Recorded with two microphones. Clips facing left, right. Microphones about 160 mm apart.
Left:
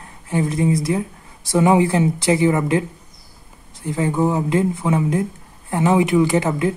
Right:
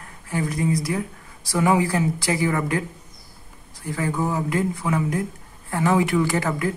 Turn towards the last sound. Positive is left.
turn(degrees=20)  # may be behind; listen again after turning